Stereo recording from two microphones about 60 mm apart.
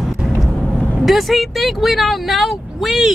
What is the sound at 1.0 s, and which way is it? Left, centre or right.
Speech, centre.